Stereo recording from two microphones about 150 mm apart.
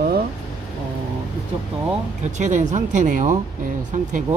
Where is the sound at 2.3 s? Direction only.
55° right (ahead or behind).